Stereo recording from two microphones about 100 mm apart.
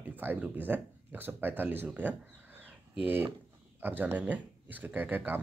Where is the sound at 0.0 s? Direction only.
20° right (ahead or behind).